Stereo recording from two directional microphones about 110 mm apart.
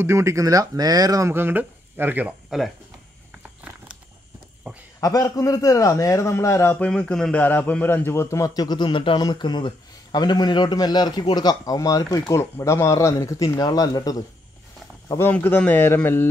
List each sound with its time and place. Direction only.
0.0 s speech: 25° right (ahead or behind)
1.3 s speech: 20° right (ahead or behind)
4.7 s speech: 15° right (ahead or behind)
5.0 s a man's voice: 35° left (ahead or behind)
6.9 s a man's voice: 5° left (ahead or behind); by 14.1 s 35° left (ahead or behind)
15.0 s a man's voice: 25° left (ahead or behind)